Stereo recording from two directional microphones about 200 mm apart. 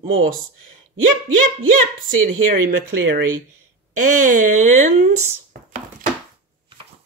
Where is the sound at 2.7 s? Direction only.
70° right (ahead or behind).